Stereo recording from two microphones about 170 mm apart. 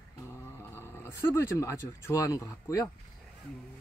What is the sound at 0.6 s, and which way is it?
Speech, 15° left (ahead or behind).